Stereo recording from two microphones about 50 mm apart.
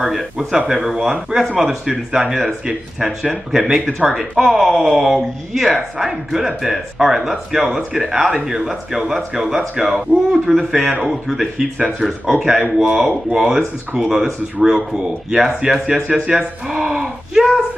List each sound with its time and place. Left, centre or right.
0.0 s speech: centre
1.9 s speech: centre